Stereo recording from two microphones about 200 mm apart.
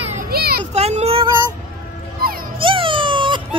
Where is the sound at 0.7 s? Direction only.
30° right (ahead or behind).